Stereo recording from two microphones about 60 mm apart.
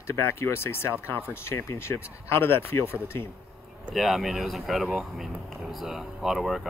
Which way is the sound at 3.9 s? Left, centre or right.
Centre.